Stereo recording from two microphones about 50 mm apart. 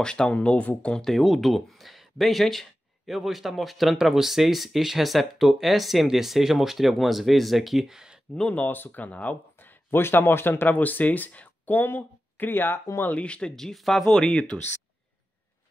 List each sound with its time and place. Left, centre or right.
0.0 s speech: centre
0.9 s speech: centre
8.5 s speech: left
13.2 s speech: left
13.6 s speech: centre
14.1 s speech: centre